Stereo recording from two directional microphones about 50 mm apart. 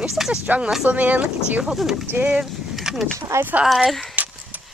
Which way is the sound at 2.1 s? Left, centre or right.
Right.